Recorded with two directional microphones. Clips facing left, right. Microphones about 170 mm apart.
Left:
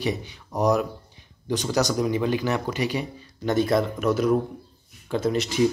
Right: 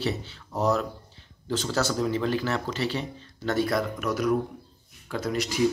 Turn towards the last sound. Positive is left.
turn(degrees=25)  # may be behind; listen again after turning